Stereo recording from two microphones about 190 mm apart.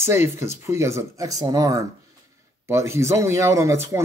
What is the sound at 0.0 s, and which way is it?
Speech, 15° right (ahead or behind).